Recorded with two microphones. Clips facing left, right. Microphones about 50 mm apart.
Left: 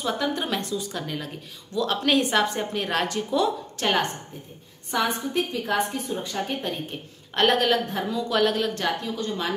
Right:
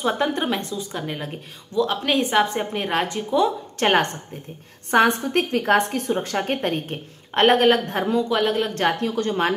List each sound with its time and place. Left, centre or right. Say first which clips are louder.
0.0 s a woman's voice: right 4 dB; right
0.5 s a woman's voice: right 2 dB; centre
1.8 s a woman's voice: right 2 dB; centre
3.8 s a woman's voice: right 5 dB; right
5.0 s a woman's voice: right 6 dB; right
8.3 s a woman's voice: right 1 dB; right
8.7 s a woman's voice: right 6 dB; right